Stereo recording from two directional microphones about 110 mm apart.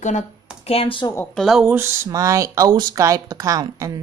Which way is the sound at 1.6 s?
20° right (ahead or behind).